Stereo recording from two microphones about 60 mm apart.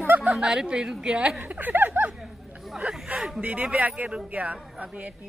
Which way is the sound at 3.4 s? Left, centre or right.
Right.